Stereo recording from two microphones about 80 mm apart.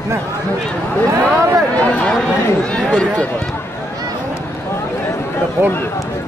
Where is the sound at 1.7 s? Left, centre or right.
Centre.